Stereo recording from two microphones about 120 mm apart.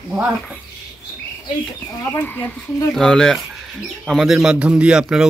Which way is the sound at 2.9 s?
5° left (ahead or behind).